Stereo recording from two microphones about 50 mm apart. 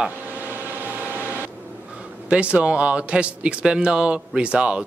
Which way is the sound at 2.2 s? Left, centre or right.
Right.